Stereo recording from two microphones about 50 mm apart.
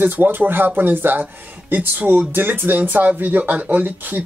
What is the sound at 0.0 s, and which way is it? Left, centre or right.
Speech, right.